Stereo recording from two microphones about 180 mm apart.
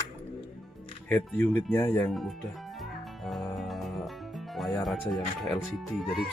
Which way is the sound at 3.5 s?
Centre (ahead or behind).